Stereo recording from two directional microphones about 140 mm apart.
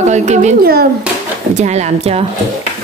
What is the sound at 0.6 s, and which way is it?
Speech, 90° right.